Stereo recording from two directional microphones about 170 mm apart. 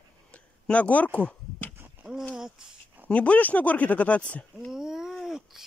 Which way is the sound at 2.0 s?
Centre (ahead or behind).